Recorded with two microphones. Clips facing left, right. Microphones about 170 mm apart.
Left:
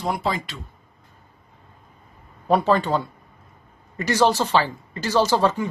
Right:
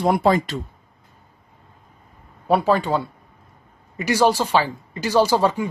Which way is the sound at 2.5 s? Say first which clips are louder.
Right 1 dB; 10° right (ahead or behind).